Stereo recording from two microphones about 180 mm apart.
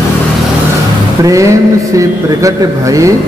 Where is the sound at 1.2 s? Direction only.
15° right (ahead or behind).